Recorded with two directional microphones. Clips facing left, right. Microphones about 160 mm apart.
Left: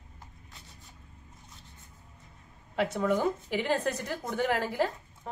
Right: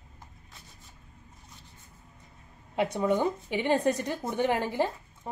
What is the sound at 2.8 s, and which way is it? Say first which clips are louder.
Speech: right 1 dB; 20° right (ahead or behind).